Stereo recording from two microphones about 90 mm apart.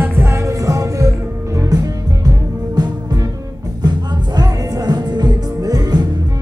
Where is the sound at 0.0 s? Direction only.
25° right (ahead or behind).